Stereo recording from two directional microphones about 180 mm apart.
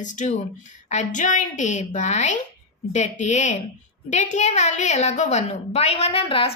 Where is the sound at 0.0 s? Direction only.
45° left (ahead or behind).